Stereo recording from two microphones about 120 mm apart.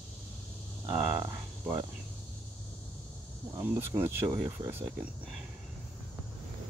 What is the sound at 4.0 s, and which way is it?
Speech, 20° right (ahead or behind).